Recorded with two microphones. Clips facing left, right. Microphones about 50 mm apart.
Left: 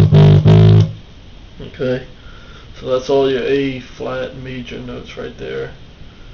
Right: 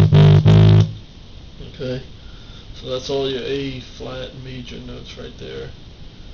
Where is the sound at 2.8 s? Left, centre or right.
Left.